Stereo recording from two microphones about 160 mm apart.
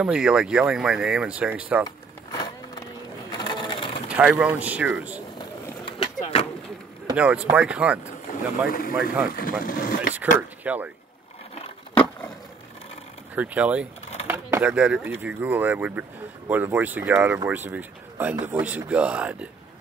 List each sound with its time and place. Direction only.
0.0 s speech: 5° right (ahead or behind)
1.9 s vehicle: 25° left (ahead or behind)
3.3 s sewing machine: 25° left (ahead or behind)
4.1 s speech: 10° right (ahead or behind)
5.4 s vehicle: 35° left (ahead or behind)
7.2 s speech: 10° right (ahead or behind)
8.3 s speech: 60° left (ahead or behind)
10.6 s speech: 10° right (ahead or behind)
13.3 s speech: 10° right (ahead or behind)